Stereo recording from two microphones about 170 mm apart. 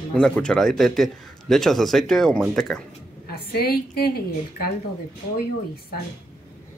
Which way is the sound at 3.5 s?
65° left (ahead or behind).